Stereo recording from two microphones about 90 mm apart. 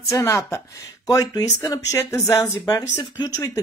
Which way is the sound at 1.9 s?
30° left (ahead or behind).